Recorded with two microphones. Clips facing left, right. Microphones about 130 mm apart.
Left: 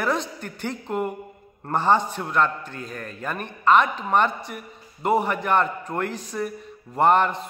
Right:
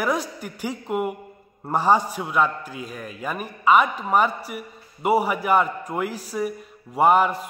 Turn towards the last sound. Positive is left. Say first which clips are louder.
# right 1 dB
turn(degrees=-5)  # may be behind; listen again after turning